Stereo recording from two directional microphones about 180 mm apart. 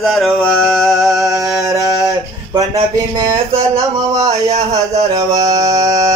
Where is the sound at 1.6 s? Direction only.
20° right (ahead or behind).